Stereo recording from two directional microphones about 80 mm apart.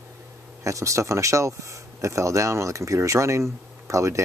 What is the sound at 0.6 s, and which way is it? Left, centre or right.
Speech, right.